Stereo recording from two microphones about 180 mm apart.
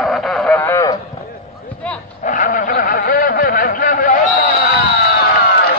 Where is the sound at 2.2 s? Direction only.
45° left (ahead or behind).